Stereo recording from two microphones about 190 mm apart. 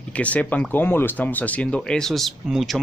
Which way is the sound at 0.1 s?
5° left (ahead or behind).